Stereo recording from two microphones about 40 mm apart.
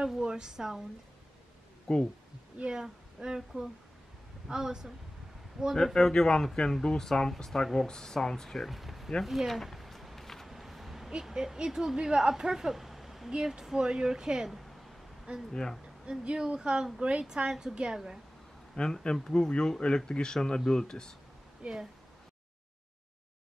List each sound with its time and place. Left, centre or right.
0.2 s speech: centre
1.9 s speech: centre
2.6 s speech: centre
5.9 s speech: centre
8.5 s speech: centre
9.2 s a sound: centre
10.5 s a sound: centre
11.2 s a woman's voice: centre
13.6 s speech: centre
14.5 s a sound: centre
15.3 s a woman's voice: right
18.8 s speech: left
19.1 s speech: centre
21.6 s a woman's voice: right